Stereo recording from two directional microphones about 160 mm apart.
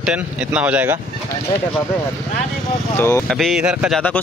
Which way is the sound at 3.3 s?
Centre (ahead or behind).